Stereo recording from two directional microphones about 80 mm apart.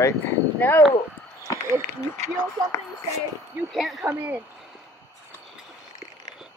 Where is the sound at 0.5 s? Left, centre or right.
Left.